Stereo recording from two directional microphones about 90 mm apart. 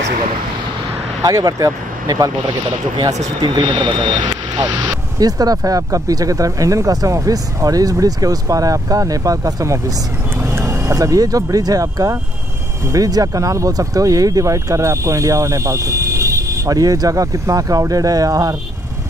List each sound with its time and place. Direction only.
1.2 s speech: 45° right (ahead or behind)
5.2 s speech: 45° right (ahead or behind)